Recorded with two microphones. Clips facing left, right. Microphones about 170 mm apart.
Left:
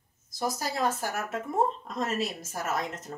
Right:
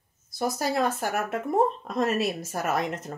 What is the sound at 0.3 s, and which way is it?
Speech, 60° right (ahead or behind).